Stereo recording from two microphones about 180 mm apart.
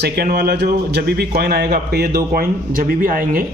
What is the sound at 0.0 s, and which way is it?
A man's voice, 60° right (ahead or behind).